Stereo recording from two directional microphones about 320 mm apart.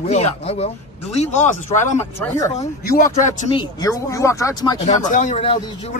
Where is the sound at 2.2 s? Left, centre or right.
Centre.